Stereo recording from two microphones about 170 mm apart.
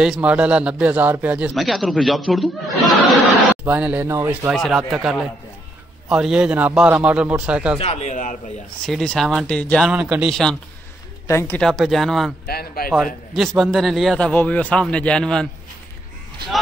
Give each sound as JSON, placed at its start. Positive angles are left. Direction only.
{"t": 0.0, "sound": "a man's voice", "side_deg": -5}
{"t": 3.6, "sound": "a man's voice", "side_deg": -10}
{"t": 4.5, "sound": "a man's voice", "side_deg": 0}
{"t": 7.8, "sound": "speech", "side_deg": 40}
{"t": 8.8, "sound": "a man's voice", "side_deg": 0}
{"t": 9.8, "sound": "a man's voice", "side_deg": -5}
{"t": 11.2, "sound": "a man's voice", "side_deg": 15}
{"t": 12.4, "sound": "speech", "side_deg": 60}
{"t": 12.9, "sound": "a man's voice", "side_deg": 0}